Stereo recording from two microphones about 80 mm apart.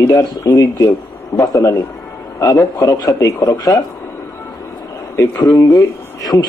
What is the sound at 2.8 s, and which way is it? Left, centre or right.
Speech, left.